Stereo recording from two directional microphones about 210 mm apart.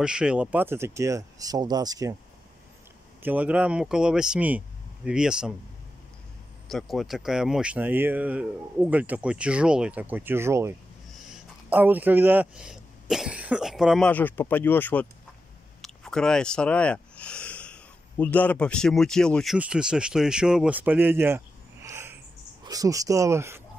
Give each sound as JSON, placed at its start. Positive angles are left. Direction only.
{"t": 0.0, "sound": "speech", "side_deg": -5}
{"t": 3.2, "sound": "speech", "side_deg": -10}
{"t": 6.7, "sound": "a man's voice", "side_deg": 0}
{"t": 21.8, "sound": "a sound", "side_deg": -10}